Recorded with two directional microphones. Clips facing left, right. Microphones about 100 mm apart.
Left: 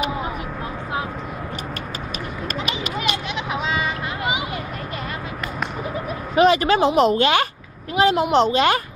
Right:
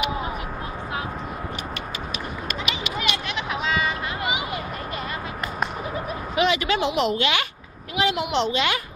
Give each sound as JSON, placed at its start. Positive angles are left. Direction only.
{"t": 2.4, "sound": "run", "side_deg": 40}
{"t": 6.3, "sound": "a woman's voice", "side_deg": 40}